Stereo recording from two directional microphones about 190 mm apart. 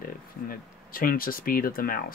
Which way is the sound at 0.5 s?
50° left (ahead or behind).